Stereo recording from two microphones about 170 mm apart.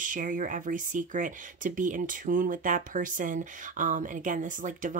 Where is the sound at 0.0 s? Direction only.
50° right (ahead or behind).